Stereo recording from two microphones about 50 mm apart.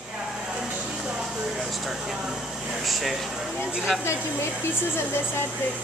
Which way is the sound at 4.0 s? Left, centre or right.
Left.